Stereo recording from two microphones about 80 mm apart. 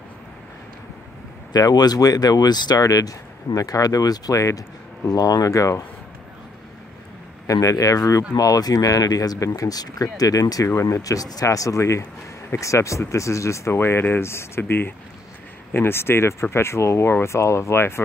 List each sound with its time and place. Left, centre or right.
1.5 s speech: left
7.4 s speech: left